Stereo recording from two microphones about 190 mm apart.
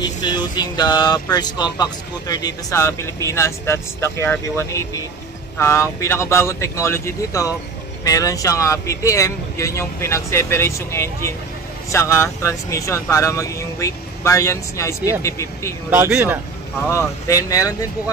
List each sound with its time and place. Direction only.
0.0 s speech: 20° left (ahead or behind)
15.9 s speech: 10° right (ahead or behind)
16.8 s speech: 15° left (ahead or behind)